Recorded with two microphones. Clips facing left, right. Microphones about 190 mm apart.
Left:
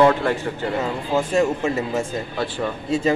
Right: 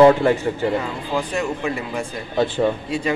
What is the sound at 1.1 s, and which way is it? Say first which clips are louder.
Speech: left 4 dB; 25° left (ahead or behind).